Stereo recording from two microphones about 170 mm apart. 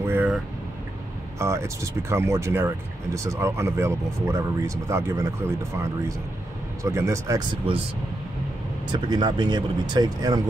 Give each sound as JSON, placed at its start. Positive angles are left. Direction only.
{"t": 0.0, "sound": "vehicle", "side_deg": -10}
{"t": 1.4, "sound": "speech", "side_deg": -15}
{"t": 9.1, "sound": "speech", "side_deg": -25}